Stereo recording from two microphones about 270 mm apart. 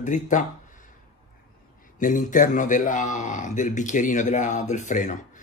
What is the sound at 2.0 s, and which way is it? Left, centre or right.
Speech, left.